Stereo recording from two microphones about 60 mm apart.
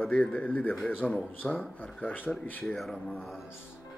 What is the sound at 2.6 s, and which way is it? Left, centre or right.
Speech, centre.